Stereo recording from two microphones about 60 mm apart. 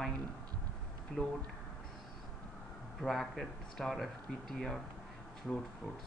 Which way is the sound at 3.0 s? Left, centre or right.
Centre.